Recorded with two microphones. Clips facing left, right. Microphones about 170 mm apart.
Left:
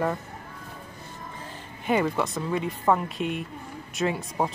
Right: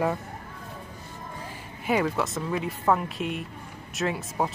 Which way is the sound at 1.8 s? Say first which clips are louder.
Left 1 dB; centre (ahead or behind).